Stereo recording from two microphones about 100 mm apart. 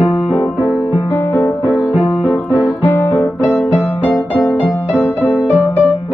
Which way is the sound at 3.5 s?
10° right (ahead or behind).